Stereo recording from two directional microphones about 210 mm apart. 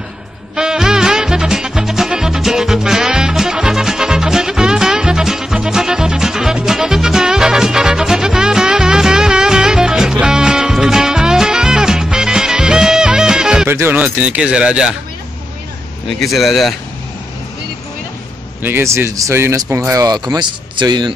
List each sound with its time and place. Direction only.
0.6 s music: 5° right (ahead or behind)
16.1 s speech: centre (ahead or behind)
18.6 s speech: 10° right (ahead or behind)